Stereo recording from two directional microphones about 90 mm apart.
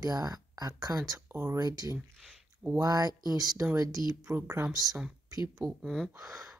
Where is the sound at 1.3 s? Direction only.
25° right (ahead or behind).